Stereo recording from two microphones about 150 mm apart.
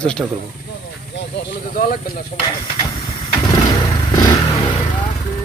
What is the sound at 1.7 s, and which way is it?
Speech, 65° left (ahead or behind).